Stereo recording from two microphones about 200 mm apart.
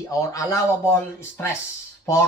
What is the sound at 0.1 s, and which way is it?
Speech, 15° left (ahead or behind).